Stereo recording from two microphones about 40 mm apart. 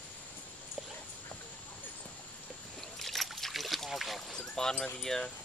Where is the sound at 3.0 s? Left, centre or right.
Centre.